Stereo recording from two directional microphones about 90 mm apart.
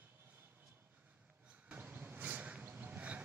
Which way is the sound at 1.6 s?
20° right (ahead or behind).